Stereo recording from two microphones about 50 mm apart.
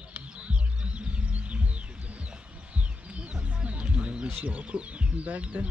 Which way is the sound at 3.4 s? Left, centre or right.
Right.